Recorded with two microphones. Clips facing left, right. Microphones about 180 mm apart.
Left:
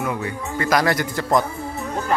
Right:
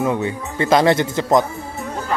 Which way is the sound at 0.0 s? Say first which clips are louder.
Right 5 dB; 25° right (ahead or behind).